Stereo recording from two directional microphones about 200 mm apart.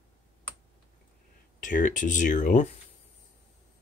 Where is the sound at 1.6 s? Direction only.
40° left (ahead or behind).